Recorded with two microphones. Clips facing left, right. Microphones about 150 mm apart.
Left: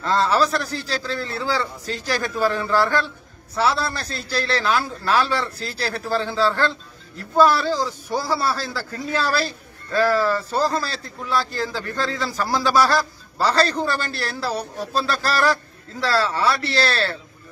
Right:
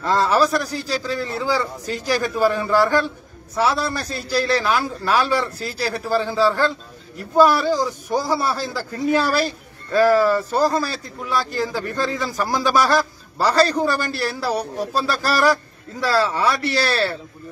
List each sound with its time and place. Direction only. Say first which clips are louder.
0.0 s a man's voice: right 2 dB; 10° right (ahead or behind)